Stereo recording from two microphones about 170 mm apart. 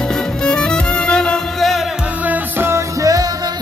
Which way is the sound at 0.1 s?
5° left (ahead or behind).